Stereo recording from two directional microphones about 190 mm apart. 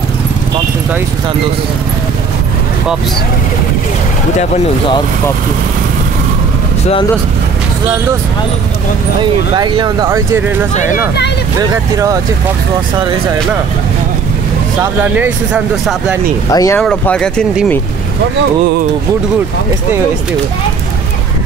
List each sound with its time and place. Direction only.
4.4 s speech: 25° left (ahead or behind)
9.2 s speech: 25° right (ahead or behind)
14.8 s speech: 10° right (ahead or behind)
16.4 s speech: 15° left (ahead or behind)
16.8 s speech: 5° left (ahead or behind)